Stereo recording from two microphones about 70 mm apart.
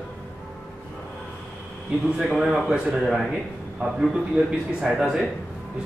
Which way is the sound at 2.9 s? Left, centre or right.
Centre.